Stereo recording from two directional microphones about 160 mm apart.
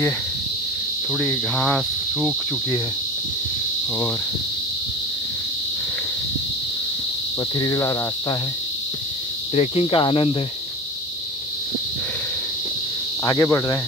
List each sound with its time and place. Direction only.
1.1 s speech: 10° left (ahead or behind)
7.5 s cricket: 20° left (ahead or behind)
9.6 s speech: 35° left (ahead or behind)
13.2 s cricket: 20° left (ahead or behind)